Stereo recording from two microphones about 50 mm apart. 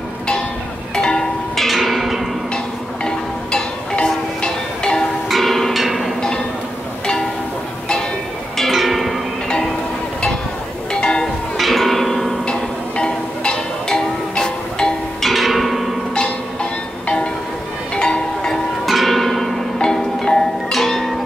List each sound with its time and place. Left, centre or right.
0.9 s music: centre
1.6 s music: centre
2.5 s music: centre
5.3 s music: centre
8.5 s music: centre
10.9 s music: centre
11.5 s music: centre
12.9 s music: centre
15.2 s music: centre
17.9 s music: centre
18.9 s music: centre